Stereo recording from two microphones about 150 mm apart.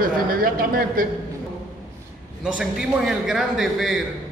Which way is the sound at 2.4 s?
5° right (ahead or behind).